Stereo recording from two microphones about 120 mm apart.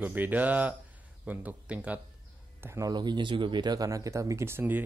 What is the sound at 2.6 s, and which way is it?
Speech, 20° right (ahead or behind).